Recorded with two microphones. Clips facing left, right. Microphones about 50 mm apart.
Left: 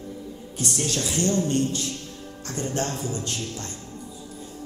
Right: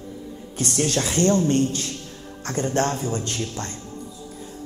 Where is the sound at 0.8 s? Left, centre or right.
Right.